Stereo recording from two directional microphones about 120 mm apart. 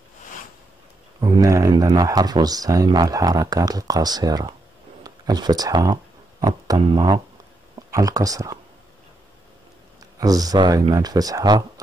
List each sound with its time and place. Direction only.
1.2 s speech: 30° right (ahead or behind)
10.1 s speech: 30° right (ahead or behind)